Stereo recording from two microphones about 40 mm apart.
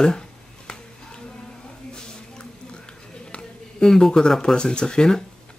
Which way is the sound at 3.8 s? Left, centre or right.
Centre.